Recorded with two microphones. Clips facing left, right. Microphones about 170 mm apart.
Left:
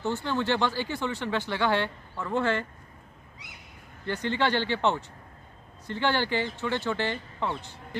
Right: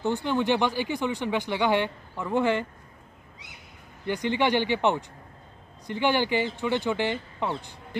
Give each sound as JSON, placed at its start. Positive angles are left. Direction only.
{"t": 0.0, "sound": "speech", "side_deg": -15}
{"t": 4.0, "sound": "speech", "side_deg": -15}